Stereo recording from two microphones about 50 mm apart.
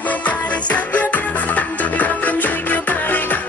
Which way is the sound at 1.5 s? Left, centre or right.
Left.